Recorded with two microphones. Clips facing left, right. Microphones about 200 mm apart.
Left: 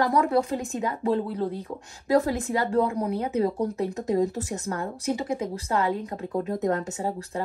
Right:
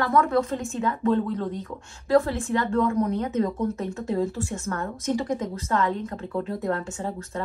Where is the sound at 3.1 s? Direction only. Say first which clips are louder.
Even; 10° left (ahead or behind).